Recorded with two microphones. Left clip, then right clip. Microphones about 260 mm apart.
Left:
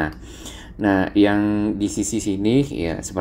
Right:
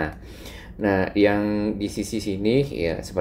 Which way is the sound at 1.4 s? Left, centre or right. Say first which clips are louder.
Left 4 dB; left.